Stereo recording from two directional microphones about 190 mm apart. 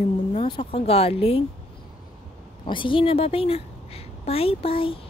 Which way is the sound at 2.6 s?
25° left (ahead or behind).